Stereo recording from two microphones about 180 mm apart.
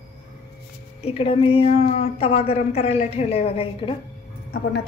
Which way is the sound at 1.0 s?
35° left (ahead or behind).